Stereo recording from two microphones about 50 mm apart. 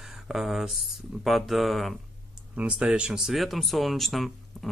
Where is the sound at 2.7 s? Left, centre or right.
Centre.